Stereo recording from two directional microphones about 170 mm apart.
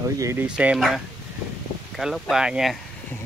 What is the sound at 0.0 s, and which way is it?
Speech, 15° right (ahead or behind).